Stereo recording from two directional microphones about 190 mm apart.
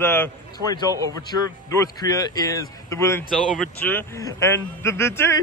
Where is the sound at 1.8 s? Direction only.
20° left (ahead or behind).